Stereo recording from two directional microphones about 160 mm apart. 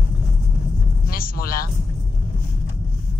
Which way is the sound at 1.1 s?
65° left (ahead or behind).